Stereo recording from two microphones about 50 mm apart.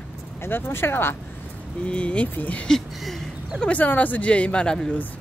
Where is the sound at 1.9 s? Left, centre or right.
Left.